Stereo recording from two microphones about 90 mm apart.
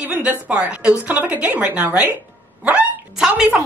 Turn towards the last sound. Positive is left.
turn(degrees=-15)  # may be behind; listen again after turning